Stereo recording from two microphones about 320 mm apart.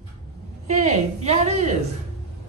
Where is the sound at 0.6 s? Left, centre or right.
Right.